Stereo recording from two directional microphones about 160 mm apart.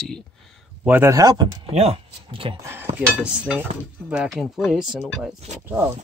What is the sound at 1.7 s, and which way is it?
Speech, 40° right (ahead or behind).